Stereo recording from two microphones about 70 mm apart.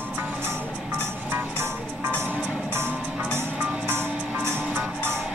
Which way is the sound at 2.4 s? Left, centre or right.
Centre.